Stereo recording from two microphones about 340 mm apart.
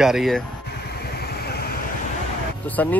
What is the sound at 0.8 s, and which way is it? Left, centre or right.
Vehicle, left.